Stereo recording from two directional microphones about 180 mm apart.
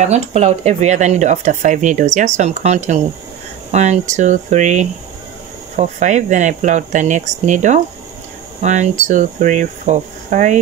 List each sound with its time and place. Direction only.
0.0 s speech: 40° right (ahead or behind)